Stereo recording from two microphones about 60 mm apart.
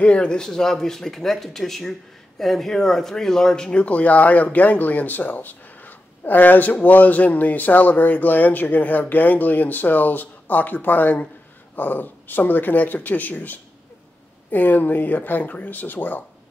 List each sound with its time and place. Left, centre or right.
0.0 s speech: centre; by 16.3 s left